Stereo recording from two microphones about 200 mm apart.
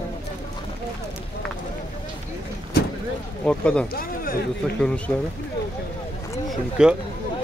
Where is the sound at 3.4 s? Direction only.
5° left (ahead or behind).